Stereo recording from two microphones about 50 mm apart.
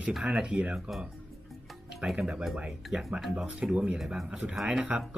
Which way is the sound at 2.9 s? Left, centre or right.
Centre.